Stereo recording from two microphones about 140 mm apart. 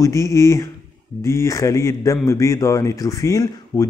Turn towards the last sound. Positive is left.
turn(degrees=25)  # may be behind; listen again after turning